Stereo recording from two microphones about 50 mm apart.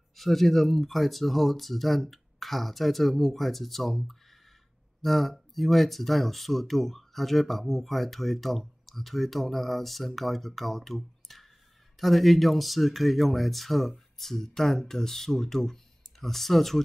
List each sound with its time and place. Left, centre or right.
0.1 s speech: centre